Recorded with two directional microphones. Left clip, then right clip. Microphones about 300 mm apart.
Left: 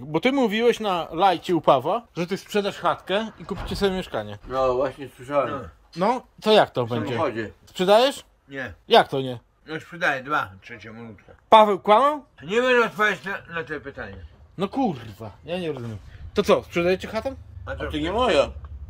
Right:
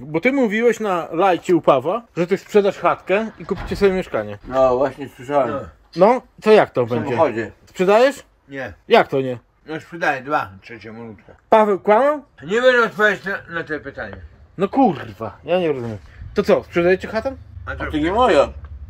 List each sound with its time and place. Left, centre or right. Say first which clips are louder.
0.1 s speech: right 4 dB; centre
4.7 s speech: right 5 dB; right
6.0 s speech: right 7 dB; centre
7.2 s speech: right 9 dB; right
7.7 s speech: right 4 dB; centre
8.5 s speech: right 4 dB; centre
8.8 s speech: right 3 dB; centre
12.4 s speech: right 5 dB; centre